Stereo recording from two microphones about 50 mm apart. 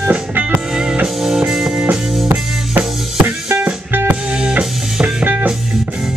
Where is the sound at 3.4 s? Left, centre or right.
Right.